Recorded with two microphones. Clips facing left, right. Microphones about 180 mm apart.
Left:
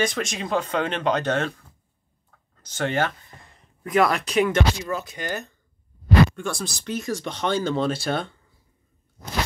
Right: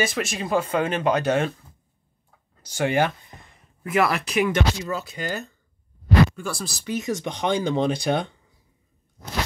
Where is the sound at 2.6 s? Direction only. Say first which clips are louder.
Right 3 dB; 10° right (ahead or behind).